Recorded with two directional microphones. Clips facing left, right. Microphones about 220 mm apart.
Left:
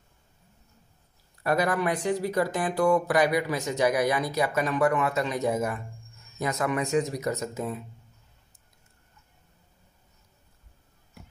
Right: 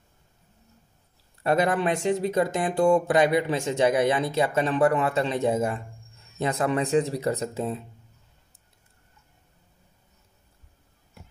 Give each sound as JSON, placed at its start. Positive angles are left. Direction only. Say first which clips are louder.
{"t": 1.4, "sound": "speech", "louder": "right 2 dB", "side_deg": -25}